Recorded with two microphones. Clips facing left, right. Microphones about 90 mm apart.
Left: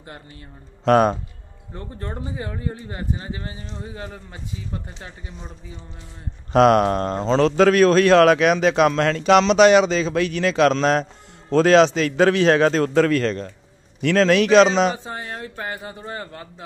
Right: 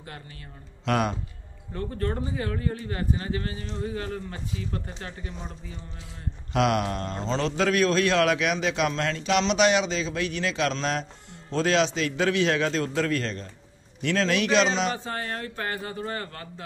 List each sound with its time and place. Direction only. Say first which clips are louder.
0.8 s speech: left 10 dB; 35° left (ahead or behind)
1.7 s speech: right 3 dB; 25° left (ahead or behind)
6.5 s a man's voice: left 10 dB; 45° left (ahead or behind)
15.0 s speech: left 1 dB; 15° left (ahead or behind)